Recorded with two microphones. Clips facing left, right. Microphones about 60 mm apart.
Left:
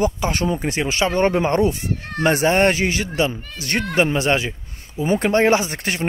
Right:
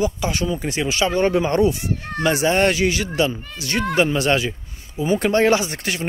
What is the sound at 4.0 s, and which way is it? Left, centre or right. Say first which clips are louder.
A man's voice: even; left.